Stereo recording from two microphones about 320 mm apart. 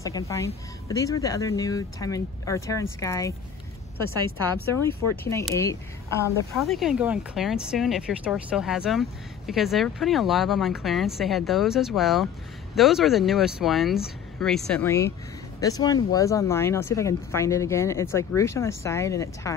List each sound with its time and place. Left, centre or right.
0.0 s speech: centre
5.3 s a woman's voice: centre